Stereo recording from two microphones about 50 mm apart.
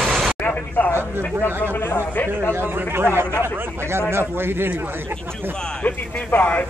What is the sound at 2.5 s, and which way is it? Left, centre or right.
A man's voice, right.